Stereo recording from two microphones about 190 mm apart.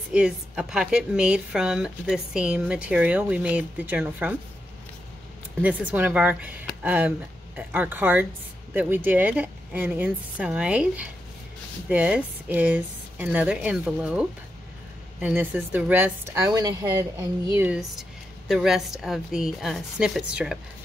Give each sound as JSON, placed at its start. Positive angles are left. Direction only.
{"t": 0.1, "sound": "speech", "side_deg": -5}
{"t": 5.6, "sound": "speech", "side_deg": -10}
{"t": 17.6, "sound": "speech", "side_deg": -5}